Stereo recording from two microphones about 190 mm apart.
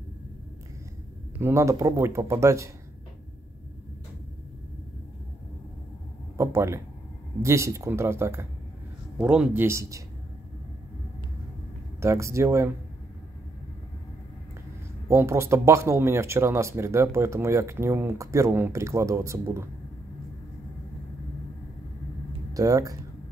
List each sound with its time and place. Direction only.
1.4 s speech: 15° right (ahead or behind)
6.3 s a sound: 15° right (ahead or behind)
7.4 s speech: 15° right (ahead or behind)
12.0 s speech: 15° right (ahead or behind)
15.0 s speech: 15° right (ahead or behind)
22.5 s speech: 20° right (ahead or behind)